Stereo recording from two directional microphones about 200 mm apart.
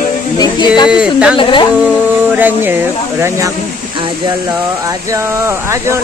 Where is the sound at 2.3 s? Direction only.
10° right (ahead or behind).